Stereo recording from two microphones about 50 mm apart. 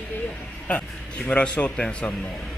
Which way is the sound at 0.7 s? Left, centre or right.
Left.